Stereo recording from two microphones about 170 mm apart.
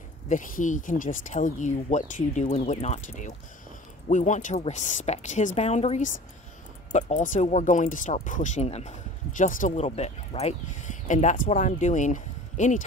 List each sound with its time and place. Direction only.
0.3 s speech: 50° left (ahead or behind)